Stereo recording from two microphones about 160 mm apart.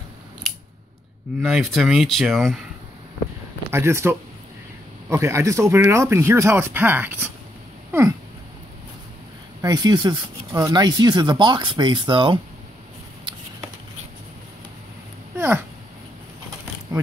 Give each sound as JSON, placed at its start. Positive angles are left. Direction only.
{"t": 1.4, "sound": "speech", "side_deg": 0}
{"t": 3.7, "sound": "speech", "side_deg": -15}
{"t": 9.6, "sound": "speech", "side_deg": -25}
{"t": 15.3, "sound": "a sound", "side_deg": -15}